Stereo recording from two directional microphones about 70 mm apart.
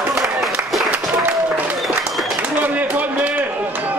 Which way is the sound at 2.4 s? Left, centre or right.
Right.